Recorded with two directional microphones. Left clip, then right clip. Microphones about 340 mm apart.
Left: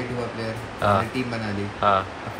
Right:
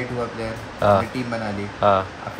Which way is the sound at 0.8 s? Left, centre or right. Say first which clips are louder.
Right 4 dB; centre.